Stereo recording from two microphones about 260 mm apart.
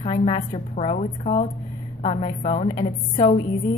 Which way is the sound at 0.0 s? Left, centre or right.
Left.